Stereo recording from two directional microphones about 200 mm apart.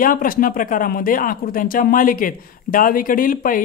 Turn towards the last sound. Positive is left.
turn(degrees=45)  # may be behind; listen again after turning